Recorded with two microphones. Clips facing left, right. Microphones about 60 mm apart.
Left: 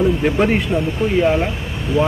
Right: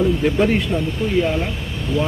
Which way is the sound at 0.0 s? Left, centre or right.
Left.